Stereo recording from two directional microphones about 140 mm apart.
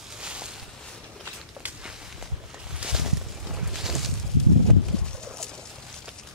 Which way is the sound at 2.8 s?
5° right (ahead or behind).